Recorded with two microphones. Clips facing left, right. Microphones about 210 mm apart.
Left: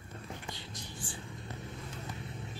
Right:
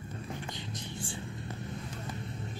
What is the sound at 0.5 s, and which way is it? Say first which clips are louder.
Whispering: right 5 dB; 20° right (ahead or behind).